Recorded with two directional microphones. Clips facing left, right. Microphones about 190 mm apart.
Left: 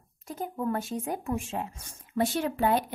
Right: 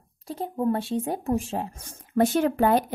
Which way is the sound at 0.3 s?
30° right (ahead or behind).